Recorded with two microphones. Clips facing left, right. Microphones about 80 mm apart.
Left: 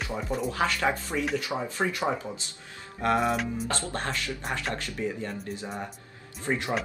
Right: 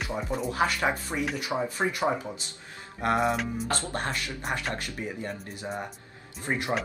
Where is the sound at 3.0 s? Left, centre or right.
Right.